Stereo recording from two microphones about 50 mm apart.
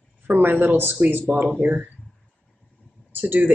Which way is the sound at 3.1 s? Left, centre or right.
Right.